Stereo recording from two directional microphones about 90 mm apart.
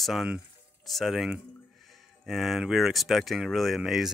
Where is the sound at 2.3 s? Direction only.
Centre (ahead or behind).